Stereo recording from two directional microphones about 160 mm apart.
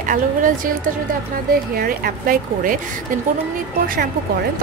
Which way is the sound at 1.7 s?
65° right (ahead or behind).